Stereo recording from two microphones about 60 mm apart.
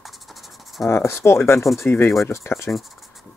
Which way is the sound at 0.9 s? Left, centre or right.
Left.